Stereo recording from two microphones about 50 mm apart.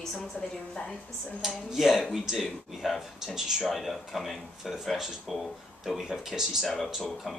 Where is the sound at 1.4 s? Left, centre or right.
Centre.